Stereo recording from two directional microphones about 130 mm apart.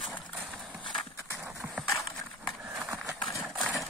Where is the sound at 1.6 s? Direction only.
10° right (ahead or behind).